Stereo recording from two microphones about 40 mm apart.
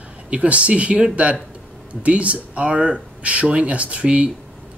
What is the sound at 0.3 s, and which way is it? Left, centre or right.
Speech, right.